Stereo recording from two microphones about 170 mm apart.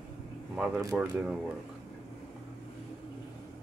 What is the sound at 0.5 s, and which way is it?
Speech, 5° right (ahead or behind).